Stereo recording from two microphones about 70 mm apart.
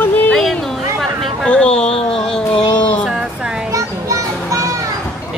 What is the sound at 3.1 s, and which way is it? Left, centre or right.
Music, centre.